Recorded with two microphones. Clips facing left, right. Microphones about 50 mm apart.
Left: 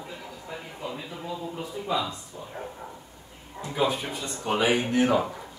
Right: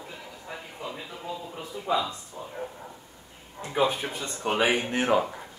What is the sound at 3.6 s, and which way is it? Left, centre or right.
Speech, right.